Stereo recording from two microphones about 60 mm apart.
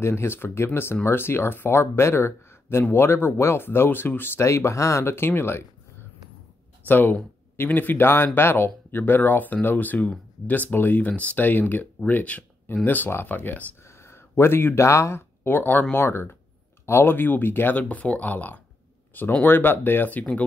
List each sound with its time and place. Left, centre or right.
0.0 s speech: left
4.5 s speech: left
6.9 s speech: left
11.1 s speech: left
13.8 s a sound: left
14.8 s speech: left
17.7 s speech: left